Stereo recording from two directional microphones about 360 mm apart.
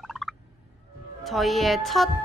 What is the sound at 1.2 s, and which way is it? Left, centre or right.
Speech, centre.